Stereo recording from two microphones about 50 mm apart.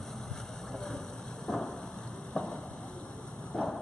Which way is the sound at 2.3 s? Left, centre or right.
Centre.